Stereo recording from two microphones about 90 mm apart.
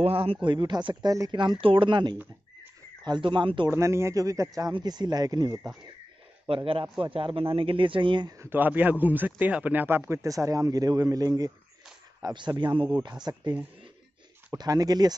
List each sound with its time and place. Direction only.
0.0 s speech: 90° right; by 3.7 s 60° right (ahead or behind)
3.7 s speech: 30° right (ahead or behind)
4.7 s speech: 55° right (ahead or behind)
6.4 s a man's voice: 90° right; by 8.3 s 65° right (ahead or behind)
8.5 s speech: 20° right (ahead or behind); by 13.3 s 50° right (ahead or behind)
14.6 s speech: 45° right (ahead or behind)